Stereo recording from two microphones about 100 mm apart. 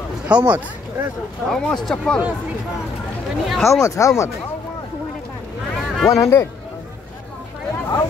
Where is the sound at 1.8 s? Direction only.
10° left (ahead or behind).